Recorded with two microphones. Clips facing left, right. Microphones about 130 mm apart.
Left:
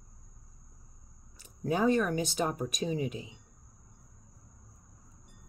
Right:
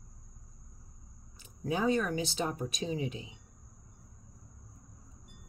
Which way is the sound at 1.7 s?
50° left (ahead or behind).